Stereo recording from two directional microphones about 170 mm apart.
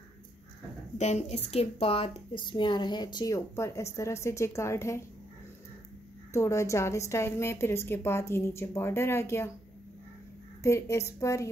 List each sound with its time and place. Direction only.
0.9 s a woman's voice: 40° left (ahead or behind); by 5.0 s 15° left (ahead or behind)
6.3 s a woman's voice: 15° left (ahead or behind)
10.6 s a woman's voice: 15° left (ahead or behind)